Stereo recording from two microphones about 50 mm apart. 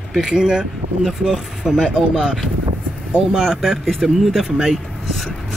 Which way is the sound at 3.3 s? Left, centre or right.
Centre.